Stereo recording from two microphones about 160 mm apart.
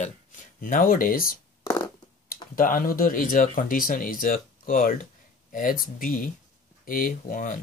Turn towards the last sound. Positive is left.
turn(degrees=60)  # may be behind; listen again after turning